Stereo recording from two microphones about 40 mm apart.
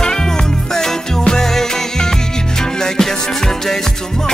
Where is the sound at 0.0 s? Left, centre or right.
Centre.